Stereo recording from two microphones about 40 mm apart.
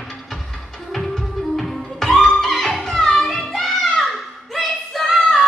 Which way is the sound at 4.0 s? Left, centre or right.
Centre.